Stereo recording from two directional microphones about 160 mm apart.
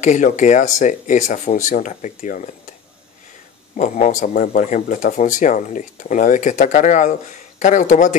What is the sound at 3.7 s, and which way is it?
Speech, 50° left (ahead or behind).